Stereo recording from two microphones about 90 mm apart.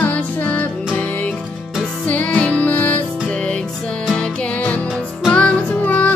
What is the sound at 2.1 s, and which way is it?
Music, 15° left (ahead or behind).